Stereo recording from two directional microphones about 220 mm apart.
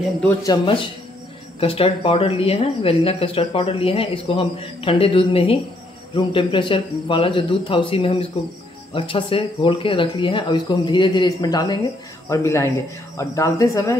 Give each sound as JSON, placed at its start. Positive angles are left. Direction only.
{"t": 0.4, "sound": "speech", "side_deg": 20}